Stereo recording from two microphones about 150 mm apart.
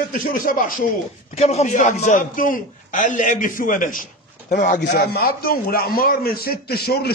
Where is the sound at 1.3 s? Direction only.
45° left (ahead or behind).